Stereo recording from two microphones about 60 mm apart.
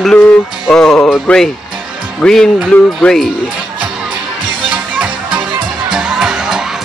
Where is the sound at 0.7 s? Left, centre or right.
Centre.